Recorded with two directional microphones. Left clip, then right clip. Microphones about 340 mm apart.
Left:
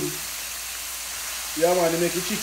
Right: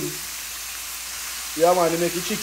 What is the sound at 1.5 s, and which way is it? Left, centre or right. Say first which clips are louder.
Speech: right 3 dB; centre.